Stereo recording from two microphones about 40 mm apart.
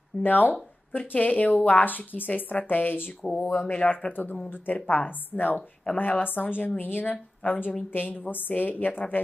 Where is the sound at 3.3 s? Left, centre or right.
Left.